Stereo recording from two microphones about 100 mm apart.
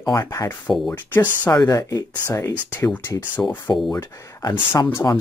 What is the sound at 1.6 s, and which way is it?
Speech, 35° left (ahead or behind).